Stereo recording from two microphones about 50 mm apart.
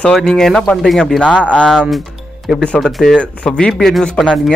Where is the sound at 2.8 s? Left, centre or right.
Centre.